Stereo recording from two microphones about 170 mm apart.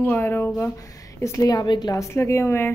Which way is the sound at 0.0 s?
10° left (ahead or behind).